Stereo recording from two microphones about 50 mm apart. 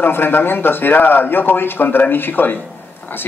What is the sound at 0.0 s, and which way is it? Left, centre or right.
Speech, left.